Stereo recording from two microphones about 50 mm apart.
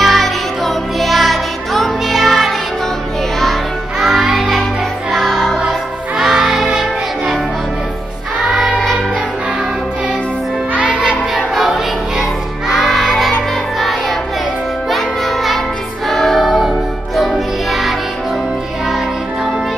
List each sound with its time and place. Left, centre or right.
0.0 s music: centre
4.0 s music: centre
5.7 s music: centre
8.6 s music: centre
10.8 s music: centre
11.5 s music: centre